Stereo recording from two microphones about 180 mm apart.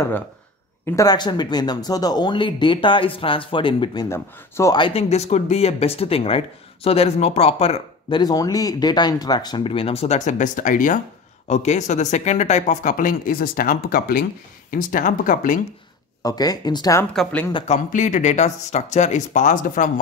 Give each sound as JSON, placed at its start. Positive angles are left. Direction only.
{"t": 0.8, "sound": "speech", "side_deg": 20}
{"t": 4.7, "sound": "speech", "side_deg": 30}
{"t": 8.2, "sound": "speech", "side_deg": 20}
{"t": 16.2, "sound": "speech", "side_deg": 20}
{"t": 17.1, "sound": "speech", "side_deg": 5}
{"t": 17.6, "sound": "speech", "side_deg": 45}